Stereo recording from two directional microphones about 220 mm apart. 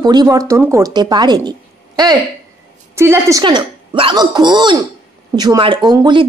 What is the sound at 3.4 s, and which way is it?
Speech, 20° right (ahead or behind).